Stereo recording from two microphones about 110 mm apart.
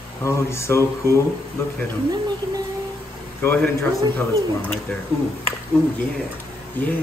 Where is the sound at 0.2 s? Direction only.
25° left (ahead or behind).